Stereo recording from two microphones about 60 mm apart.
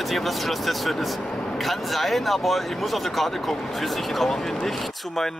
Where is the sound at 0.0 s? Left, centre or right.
Centre.